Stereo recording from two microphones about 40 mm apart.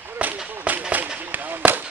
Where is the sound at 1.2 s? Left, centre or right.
Right.